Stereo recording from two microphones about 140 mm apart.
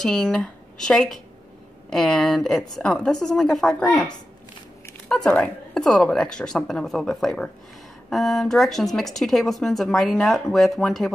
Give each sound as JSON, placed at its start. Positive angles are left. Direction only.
{"t": 0.0, "sound": "speech", "side_deg": 5}